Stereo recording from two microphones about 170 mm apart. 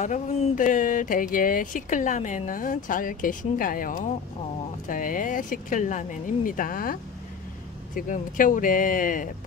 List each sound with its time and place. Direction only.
0.0 s speech: 50° left (ahead or behind)